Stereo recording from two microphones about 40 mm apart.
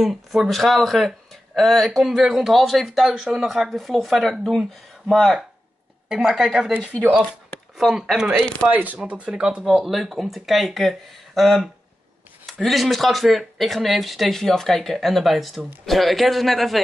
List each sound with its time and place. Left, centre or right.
0.0 s speech: centre
6.0 s a woman's voice: centre
7.9 s a woman's voice: centre
8.9 s speech: right
9.3 s speech: right
9.7 s speech: centre
14.4 s speech: centre